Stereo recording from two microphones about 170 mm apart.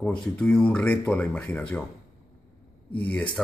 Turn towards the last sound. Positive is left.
turn(degrees=10)  # may be behind; listen again after turning